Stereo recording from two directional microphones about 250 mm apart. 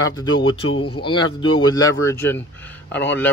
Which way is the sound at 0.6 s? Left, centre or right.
Left.